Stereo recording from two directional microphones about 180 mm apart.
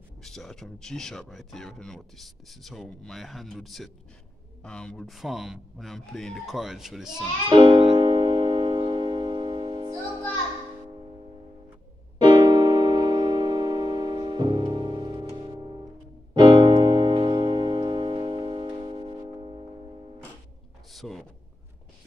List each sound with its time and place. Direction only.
0.2 s speech: centre (ahead or behind)
7.4 s music: 25° right (ahead or behind)
12.2 s keyboard: 25° right (ahead or behind)
16.3 s music: 25° right (ahead or behind)
20.9 s a man's voice: centre (ahead or behind)